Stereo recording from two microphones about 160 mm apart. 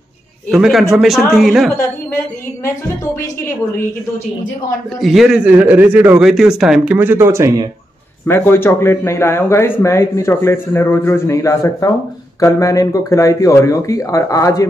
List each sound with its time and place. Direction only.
0.5 s a man's voice: centre (ahead or behind)
1.8 s speech: 20° left (ahead or behind)
5.0 s a man's voice: centre (ahead or behind); by 7.6 s 15° right (ahead or behind)
8.3 s speech: 15° left (ahead or behind)